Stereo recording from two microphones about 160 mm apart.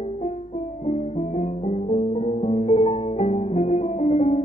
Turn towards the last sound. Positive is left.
turn(degrees=40)  # may be behind; listen again after turning